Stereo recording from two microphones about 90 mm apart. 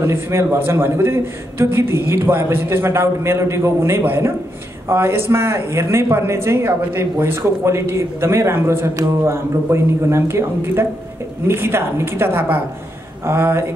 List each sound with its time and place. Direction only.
0.0 s speech: 30° right (ahead or behind)